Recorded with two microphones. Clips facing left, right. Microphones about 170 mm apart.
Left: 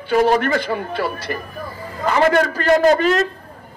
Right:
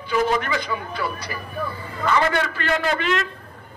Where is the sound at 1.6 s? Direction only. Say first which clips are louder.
Left 2 dB; 40° left (ahead or behind).